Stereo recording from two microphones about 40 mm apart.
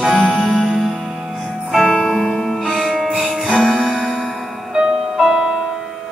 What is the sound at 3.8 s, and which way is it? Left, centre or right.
Music, centre.